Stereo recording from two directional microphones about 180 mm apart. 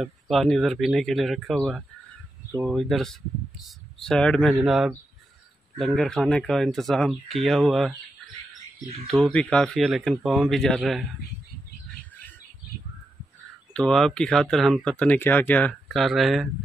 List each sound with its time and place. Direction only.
0.0 s speech: centre (ahead or behind)
9.0 s speech: 5° left (ahead or behind)
13.7 s speech: 5° left (ahead or behind)